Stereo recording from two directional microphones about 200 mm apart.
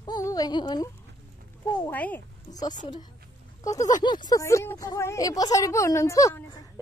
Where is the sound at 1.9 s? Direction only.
10° left (ahead or behind).